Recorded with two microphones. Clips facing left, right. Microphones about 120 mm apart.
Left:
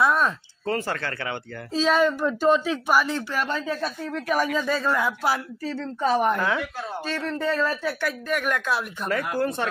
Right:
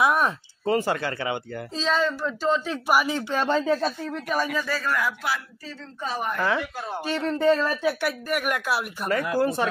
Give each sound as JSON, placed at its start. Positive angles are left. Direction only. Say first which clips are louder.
{"t": 0.0, "sound": "speech", "louder": "even", "side_deg": -15}
{"t": 1.7, "sound": "a child's voice", "louder": "left 4 dB", "side_deg": 10}
{"t": 2.9, "sound": "speech", "louder": "right 1 dB", "side_deg": -15}
{"t": 4.6, "sound": "speech", "louder": "left 3 dB", "side_deg": 20}
{"t": 5.9, "sound": "speech", "louder": "left 8 dB", "side_deg": 65}
{"t": 6.4, "sound": "speech", "louder": "even", "side_deg": 0}
{"t": 7.1, "sound": "speech", "louder": "right 6 dB", "side_deg": -15}